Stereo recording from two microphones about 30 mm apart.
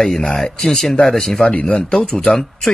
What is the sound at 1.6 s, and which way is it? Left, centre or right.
Speech, left.